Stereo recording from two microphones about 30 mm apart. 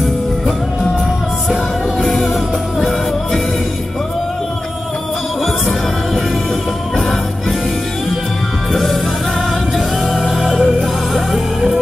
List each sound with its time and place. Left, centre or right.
2.0 s music: left
10.6 s music: centre